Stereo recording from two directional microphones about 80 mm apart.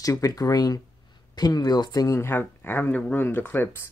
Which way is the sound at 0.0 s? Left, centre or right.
Left.